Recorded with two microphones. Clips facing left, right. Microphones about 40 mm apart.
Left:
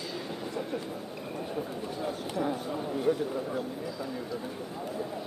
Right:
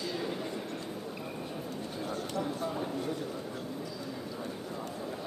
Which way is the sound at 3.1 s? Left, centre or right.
Centre.